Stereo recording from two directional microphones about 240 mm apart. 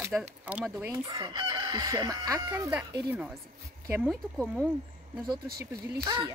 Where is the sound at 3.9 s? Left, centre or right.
Centre.